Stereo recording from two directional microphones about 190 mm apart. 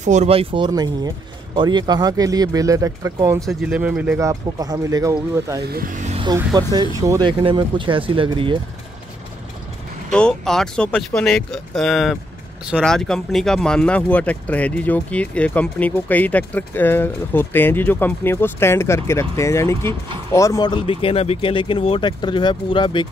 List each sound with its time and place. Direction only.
0.0 s speech: 35° right (ahead or behind); by 3.4 s 15° right (ahead or behind)
3.4 s speech: 5° right (ahead or behind)
4.2 s speech: 20° right (ahead or behind)
5.6 s speech: 55° right (ahead or behind)
6.2 s speech: 20° right (ahead or behind)
10.1 s speech: 5° left (ahead or behind); by 23.0 s 25° left (ahead or behind)